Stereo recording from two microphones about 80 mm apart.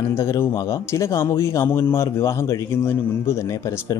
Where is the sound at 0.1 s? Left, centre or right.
Left.